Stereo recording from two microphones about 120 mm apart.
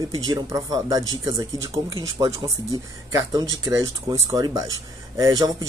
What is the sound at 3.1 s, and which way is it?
Speech, 30° right (ahead or behind).